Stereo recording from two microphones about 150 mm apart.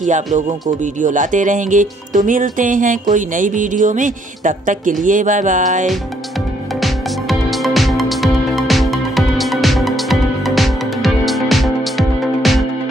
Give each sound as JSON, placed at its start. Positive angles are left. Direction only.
{"t": 0.0, "sound": "speech", "side_deg": -55}
{"t": 6.8, "sound": "music", "side_deg": 0}